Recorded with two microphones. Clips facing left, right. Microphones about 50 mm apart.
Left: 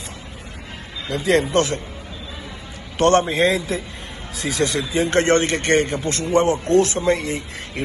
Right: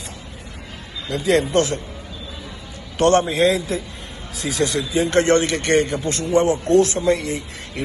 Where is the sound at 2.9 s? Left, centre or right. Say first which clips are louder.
Even; left.